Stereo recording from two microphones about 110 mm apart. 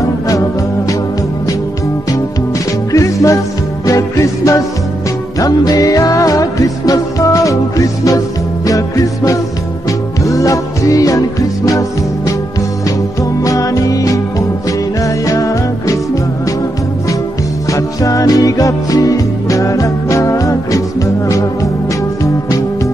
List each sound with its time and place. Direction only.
0.3 s music: 30° left (ahead or behind)
2.9 s music: 30° left (ahead or behind)
13.2 s music: 30° left (ahead or behind)
17.6 s music: 30° left (ahead or behind)